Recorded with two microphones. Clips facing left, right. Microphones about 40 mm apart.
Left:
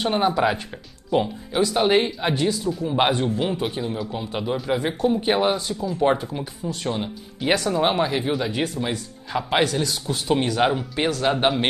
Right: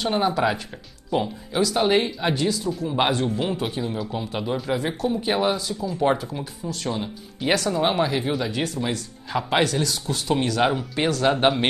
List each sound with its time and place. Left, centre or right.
0.0 s a man's voice: centre
3.3 s a man's voice: centre
6.6 s a man's voice: centre